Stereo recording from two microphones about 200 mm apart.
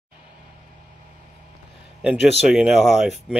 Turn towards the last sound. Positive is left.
turn(degrees=0)  # may be behind; listen again after turning